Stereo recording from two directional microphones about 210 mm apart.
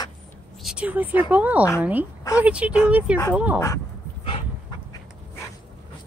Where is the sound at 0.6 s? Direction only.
5° right (ahead or behind).